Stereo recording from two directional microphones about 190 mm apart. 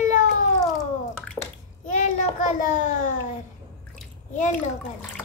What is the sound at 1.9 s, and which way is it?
A child's voice, 40° left (ahead or behind).